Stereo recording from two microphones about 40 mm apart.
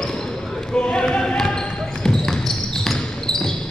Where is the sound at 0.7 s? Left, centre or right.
Left.